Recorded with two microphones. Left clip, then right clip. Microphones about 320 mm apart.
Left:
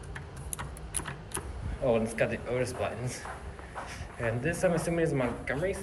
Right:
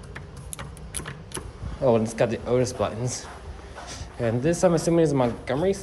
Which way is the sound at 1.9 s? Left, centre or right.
Right.